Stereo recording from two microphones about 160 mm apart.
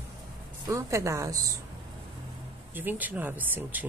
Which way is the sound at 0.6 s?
20° right (ahead or behind).